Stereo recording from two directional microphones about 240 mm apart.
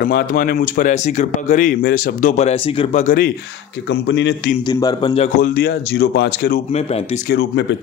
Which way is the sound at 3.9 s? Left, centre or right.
Left.